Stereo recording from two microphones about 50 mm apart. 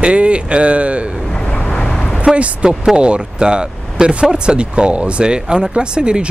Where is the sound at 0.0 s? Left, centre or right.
Right.